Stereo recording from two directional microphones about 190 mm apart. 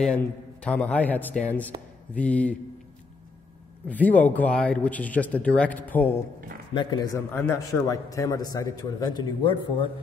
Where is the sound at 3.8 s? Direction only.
10° left (ahead or behind).